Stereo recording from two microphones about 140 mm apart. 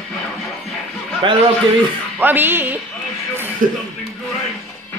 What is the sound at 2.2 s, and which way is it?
Speech, 15° right (ahead or behind).